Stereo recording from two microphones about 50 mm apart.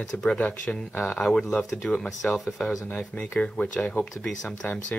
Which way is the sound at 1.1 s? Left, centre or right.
Centre.